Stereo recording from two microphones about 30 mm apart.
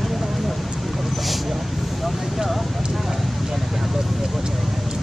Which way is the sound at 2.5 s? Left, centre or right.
Centre.